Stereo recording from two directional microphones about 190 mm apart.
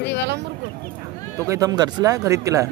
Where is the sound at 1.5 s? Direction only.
20° right (ahead or behind).